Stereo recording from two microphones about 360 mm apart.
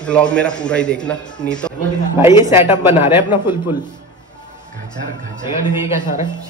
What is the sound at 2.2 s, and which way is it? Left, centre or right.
A man's voice, centre.